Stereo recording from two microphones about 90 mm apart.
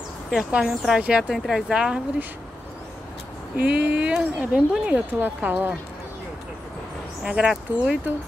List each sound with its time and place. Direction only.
0.3 s speech: 5° right (ahead or behind)
3.5 s speech: 15° right (ahead or behind)
7.2 s speech: 10° right (ahead or behind)